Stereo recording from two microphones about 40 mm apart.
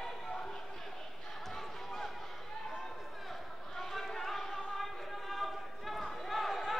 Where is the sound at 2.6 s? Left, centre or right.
Centre.